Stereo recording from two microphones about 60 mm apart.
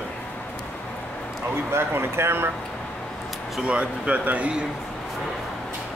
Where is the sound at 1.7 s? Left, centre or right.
Right.